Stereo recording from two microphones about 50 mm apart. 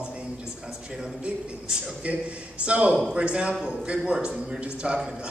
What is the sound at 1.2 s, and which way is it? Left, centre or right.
Speech, centre.